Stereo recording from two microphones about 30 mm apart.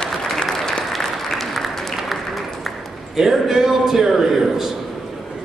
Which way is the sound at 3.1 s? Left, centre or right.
Centre.